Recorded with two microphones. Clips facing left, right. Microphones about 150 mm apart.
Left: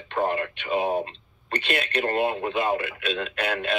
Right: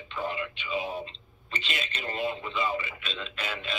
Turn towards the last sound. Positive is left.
turn(degrees=60)  # may be behind; listen again after turning